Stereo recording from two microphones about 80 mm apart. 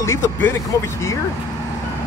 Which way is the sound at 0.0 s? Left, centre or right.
Left.